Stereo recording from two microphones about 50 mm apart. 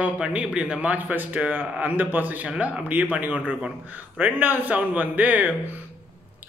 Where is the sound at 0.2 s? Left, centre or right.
Right.